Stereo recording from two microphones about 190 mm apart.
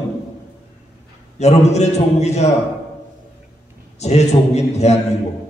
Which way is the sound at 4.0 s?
35° left (ahead or behind).